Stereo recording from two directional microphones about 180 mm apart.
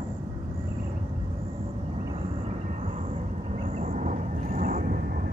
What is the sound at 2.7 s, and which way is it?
Vehicle, 40° right (ahead or behind).